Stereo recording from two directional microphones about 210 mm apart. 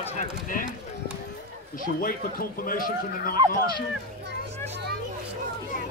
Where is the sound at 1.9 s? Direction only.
40° left (ahead or behind).